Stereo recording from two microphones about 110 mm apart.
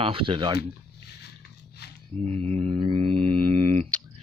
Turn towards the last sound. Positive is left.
turn(degrees=-65)  # may be behind; listen again after turning